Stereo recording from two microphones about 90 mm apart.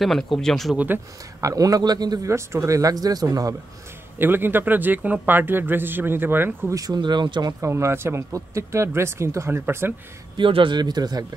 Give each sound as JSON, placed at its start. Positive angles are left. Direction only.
{"t": 0.0, "sound": "speech", "side_deg": 0}
{"t": 0.7, "sound": "a man's voice", "side_deg": -20}
{"t": 1.4, "sound": "speech", "side_deg": -40}
{"t": 2.2, "sound": "speech", "side_deg": -30}
{"t": 4.2, "sound": "a man's voice", "side_deg": -25}
{"t": 6.7, "sound": "speech", "side_deg": -40}
{"t": 7.0, "sound": "speech", "side_deg": -60}
{"t": 7.6, "sound": "a man's voice", "side_deg": -30}
{"t": 10.3, "sound": "speech", "side_deg": -70}